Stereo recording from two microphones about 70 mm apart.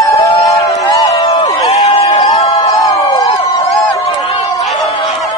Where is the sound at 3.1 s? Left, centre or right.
Left.